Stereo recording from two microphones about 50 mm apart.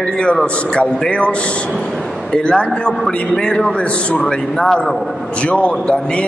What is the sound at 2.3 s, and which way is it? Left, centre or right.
A man's voice, centre.